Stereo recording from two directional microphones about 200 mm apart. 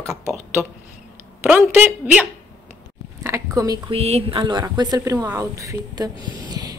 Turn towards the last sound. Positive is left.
turn(degrees=-15)  # may be behind; listen again after turning